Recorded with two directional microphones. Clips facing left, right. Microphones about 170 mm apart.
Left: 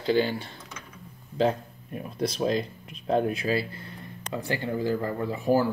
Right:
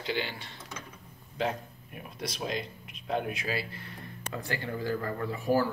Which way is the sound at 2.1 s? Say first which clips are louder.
Left 8 dB; 35° left (ahead or behind).